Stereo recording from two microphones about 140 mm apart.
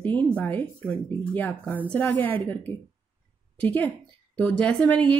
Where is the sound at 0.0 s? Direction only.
10° left (ahead or behind).